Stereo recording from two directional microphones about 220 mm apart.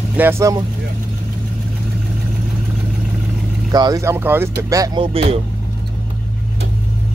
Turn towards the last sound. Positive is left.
turn(degrees=-25)  # may be behind; listen again after turning